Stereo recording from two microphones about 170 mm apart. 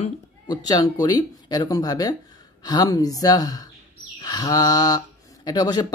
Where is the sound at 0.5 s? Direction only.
20° left (ahead or behind).